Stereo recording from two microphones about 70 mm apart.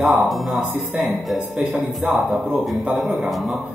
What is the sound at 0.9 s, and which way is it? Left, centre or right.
Speech, centre.